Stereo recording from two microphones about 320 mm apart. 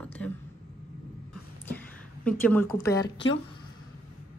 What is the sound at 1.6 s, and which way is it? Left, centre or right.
Speech, centre.